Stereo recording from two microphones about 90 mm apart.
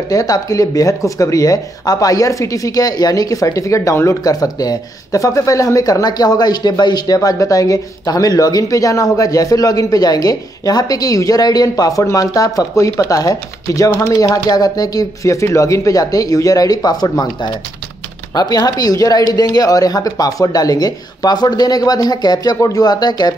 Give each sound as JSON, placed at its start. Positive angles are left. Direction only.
{"t": 0.1, "sound": "speech", "side_deg": 40}
{"t": 7.2, "sound": "speech", "side_deg": 35}